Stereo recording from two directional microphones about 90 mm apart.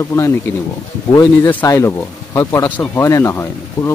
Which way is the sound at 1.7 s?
35° left (ahead or behind).